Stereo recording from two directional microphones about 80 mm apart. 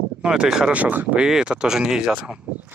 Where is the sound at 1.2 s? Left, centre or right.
Centre.